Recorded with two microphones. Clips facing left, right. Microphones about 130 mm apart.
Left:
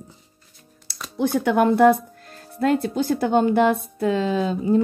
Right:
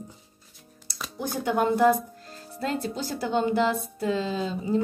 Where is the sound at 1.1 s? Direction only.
75° left (ahead or behind).